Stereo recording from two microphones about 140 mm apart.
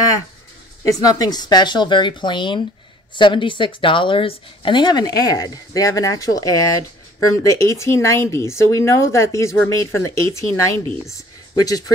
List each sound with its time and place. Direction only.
0.8 s speech: 25° left (ahead or behind)